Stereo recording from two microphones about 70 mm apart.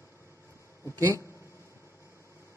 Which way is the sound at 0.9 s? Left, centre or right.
Right.